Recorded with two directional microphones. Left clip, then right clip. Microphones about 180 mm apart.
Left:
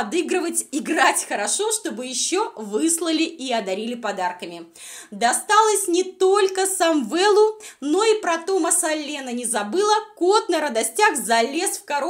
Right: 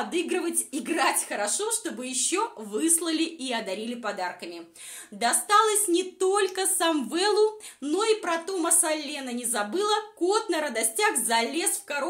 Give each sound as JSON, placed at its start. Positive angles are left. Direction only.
{"t": 0.1, "sound": "a woman's voice", "side_deg": 45}